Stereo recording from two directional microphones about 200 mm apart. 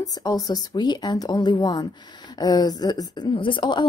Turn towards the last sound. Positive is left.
turn(degrees=25)  # may be behind; listen again after turning